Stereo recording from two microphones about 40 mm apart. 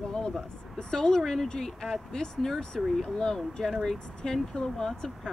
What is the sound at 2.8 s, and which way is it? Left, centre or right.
Speech, centre.